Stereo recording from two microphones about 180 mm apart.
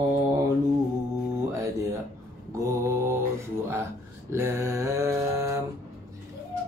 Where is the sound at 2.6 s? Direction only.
15° right (ahead or behind).